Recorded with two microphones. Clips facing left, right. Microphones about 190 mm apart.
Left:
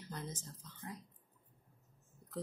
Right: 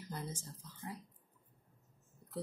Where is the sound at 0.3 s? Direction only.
10° right (ahead or behind).